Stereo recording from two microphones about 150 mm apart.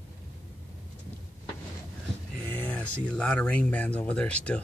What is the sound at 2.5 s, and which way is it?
Speech, 10° left (ahead or behind).